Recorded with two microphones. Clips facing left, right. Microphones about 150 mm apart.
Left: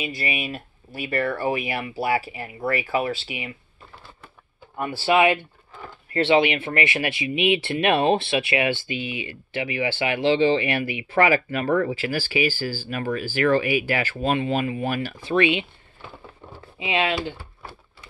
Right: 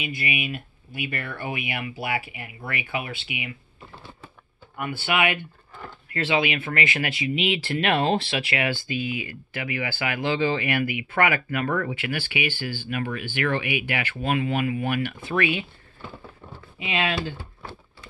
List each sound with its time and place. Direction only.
0.0 s speech: 35° left (ahead or behind)
4.7 s speech: 30° left (ahead or behind)
16.7 s speech: 25° left (ahead or behind)